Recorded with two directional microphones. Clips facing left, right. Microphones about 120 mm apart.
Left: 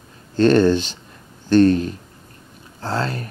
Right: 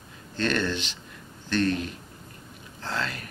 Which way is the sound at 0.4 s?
35° left (ahead or behind).